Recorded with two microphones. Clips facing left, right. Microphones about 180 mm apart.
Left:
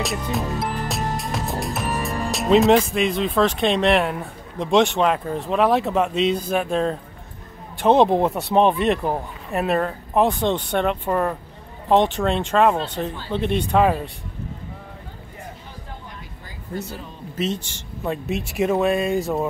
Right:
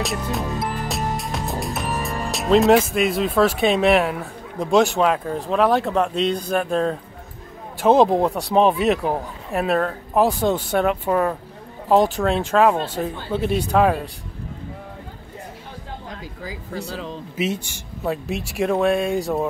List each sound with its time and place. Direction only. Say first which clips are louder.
0.0 s speech: even; centre (ahead or behind)
16.1 s speech: right 7 dB; 90° right
17.4 s speech: even; 10° right (ahead or behind)